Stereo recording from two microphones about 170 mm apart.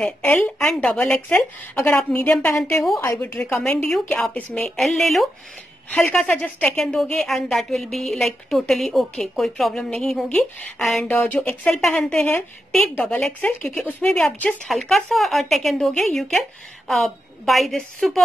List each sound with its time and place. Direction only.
0.0 s a woman's voice: 5° left (ahead or behind)